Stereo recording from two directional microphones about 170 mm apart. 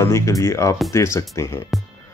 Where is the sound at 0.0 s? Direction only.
15° left (ahead or behind).